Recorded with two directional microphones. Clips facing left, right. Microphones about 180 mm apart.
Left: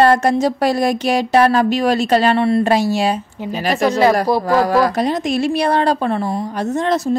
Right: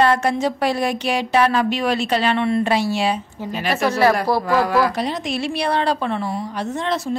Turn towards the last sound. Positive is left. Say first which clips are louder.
# left 6 dB
turn(degrees=45)  # may be behind; listen again after turning